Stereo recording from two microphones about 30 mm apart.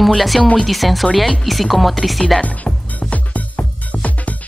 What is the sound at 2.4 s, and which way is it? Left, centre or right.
Music, left.